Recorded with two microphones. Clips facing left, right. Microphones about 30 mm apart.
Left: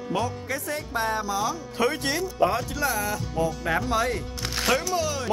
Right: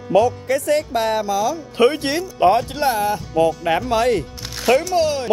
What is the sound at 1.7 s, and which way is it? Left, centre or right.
Speech, right.